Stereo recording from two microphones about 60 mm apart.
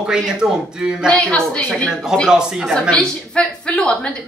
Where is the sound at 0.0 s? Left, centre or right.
Centre.